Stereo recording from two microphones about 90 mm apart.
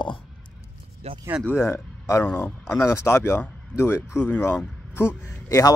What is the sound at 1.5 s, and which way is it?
A man's voice, 35° left (ahead or behind).